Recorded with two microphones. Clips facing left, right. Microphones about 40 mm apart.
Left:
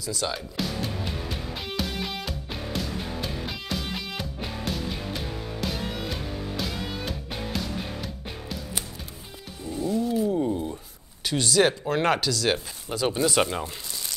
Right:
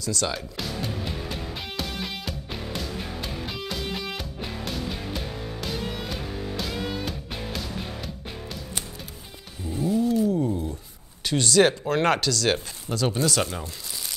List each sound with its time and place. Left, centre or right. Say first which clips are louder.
0.0 s music: right 2 dB; centre
9.7 s cat: right 3 dB; centre
10.2 s a sound: right 1 dB; left
11.2 s speech: right 2 dB; centre; by 13.7 s left